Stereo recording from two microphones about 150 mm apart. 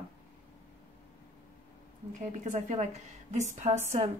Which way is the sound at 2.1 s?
55° right (ahead or behind).